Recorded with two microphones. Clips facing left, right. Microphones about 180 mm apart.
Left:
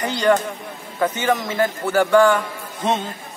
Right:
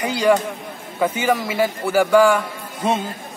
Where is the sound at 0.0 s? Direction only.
10° right (ahead or behind).